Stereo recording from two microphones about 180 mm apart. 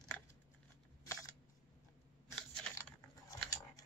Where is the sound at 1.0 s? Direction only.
20° left (ahead or behind).